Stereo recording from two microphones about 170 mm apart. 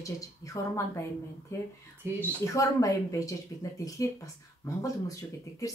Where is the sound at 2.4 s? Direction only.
20° left (ahead or behind).